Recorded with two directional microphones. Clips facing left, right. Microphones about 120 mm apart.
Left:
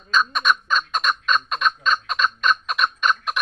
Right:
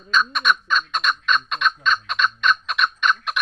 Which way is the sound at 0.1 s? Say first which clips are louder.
Even; 35° left (ahead or behind).